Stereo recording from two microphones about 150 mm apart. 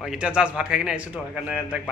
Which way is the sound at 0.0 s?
5° right (ahead or behind).